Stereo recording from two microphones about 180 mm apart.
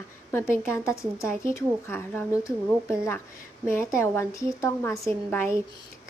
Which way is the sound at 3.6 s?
15° left (ahead or behind).